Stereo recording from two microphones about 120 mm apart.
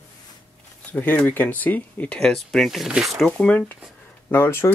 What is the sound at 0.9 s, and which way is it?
Speech, 15° left (ahead or behind).